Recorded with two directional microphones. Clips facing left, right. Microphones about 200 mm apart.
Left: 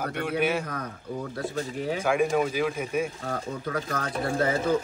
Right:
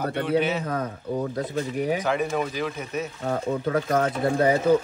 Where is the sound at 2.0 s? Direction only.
10° left (ahead or behind).